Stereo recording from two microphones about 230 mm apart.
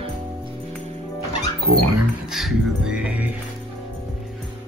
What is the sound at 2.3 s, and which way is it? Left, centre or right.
Speech, centre.